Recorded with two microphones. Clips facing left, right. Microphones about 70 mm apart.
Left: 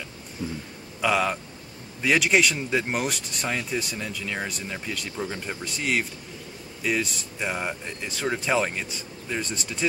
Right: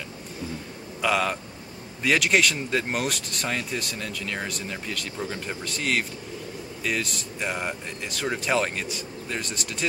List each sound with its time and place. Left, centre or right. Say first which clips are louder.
1.0 s speech: left 1 dB; centre
9.4 s speech: left 1 dB; left